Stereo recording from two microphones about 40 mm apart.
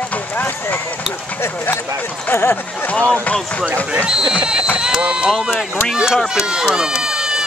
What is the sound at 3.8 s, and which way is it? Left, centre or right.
Speech, right.